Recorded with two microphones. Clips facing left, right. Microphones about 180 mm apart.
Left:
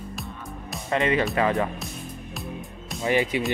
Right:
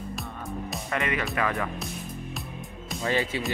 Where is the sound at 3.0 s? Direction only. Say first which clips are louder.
Left 4 dB; 15° left (ahead or behind).